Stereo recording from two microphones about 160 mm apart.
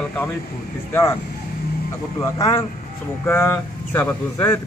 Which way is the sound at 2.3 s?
20° left (ahead or behind).